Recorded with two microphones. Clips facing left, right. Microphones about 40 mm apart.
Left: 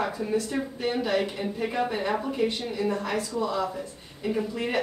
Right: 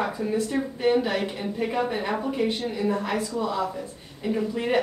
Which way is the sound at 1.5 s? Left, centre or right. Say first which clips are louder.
Right 2 dB; centre.